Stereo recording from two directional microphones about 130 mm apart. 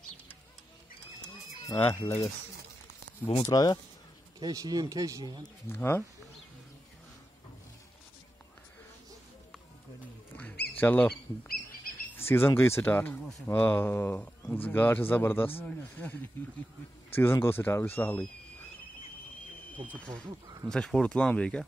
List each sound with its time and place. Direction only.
1.8 s speech: 20° left (ahead or behind)
3.4 s speech: 30° left (ahead or behind)
4.4 s speech: 30° right (ahead or behind)
5.7 s speech: 15° left (ahead or behind)
10.8 s speech: 15° left (ahead or behind)
12.3 s speech: 20° left (ahead or behind)
20.6 s speech: 5° left (ahead or behind)